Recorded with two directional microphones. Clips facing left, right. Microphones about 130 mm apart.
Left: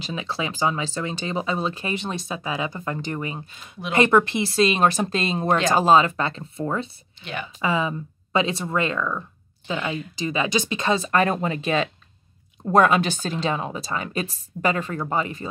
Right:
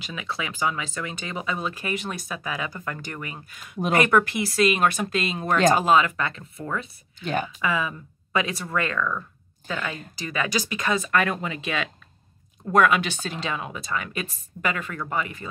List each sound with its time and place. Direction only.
0.0 s speech: 30° left (ahead or behind)
7.2 s a woman's voice: 40° right (ahead or behind)
7.4 s a woman's voice: 25° left (ahead or behind)